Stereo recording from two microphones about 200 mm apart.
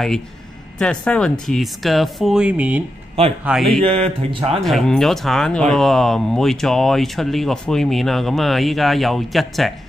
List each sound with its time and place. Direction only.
0.7 s speech: 5° left (ahead or behind)
3.8 s speech: 30° right (ahead or behind)
4.6 s speech: centre (ahead or behind)